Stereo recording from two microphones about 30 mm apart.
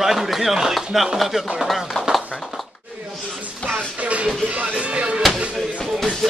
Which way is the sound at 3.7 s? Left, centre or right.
Right.